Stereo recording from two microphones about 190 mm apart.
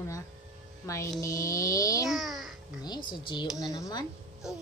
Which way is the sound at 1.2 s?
15° left (ahead or behind).